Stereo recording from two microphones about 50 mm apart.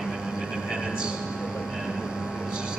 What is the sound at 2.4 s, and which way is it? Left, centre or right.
Vehicle, centre.